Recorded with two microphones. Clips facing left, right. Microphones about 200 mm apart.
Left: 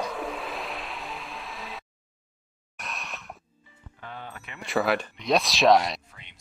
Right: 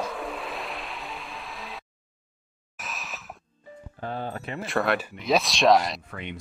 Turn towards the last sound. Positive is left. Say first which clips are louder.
# right 17 dB
turn(degrees=-65)  # may be behind; listen again after turning